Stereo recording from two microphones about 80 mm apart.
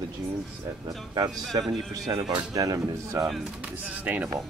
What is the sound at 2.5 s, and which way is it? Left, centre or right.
Speech, right.